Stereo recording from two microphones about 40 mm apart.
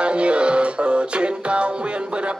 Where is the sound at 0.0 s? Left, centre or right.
Right.